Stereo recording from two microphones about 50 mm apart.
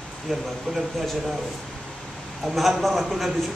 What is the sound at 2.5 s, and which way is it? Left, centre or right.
Speech, centre.